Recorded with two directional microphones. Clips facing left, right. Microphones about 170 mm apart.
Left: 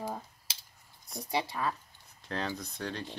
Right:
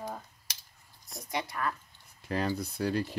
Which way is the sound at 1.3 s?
30° left (ahead or behind).